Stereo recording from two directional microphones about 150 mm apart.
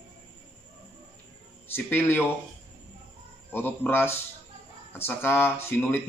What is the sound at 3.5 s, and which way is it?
A man's voice, 15° left (ahead or behind).